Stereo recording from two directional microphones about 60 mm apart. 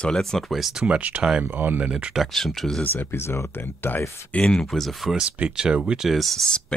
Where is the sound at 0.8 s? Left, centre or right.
Right.